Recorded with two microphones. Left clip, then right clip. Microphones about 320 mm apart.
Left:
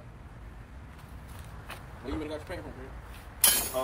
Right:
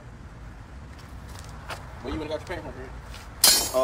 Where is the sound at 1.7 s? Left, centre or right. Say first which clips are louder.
Right 5 dB; right.